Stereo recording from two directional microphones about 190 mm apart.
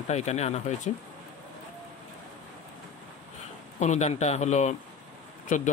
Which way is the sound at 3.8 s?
35° left (ahead or behind).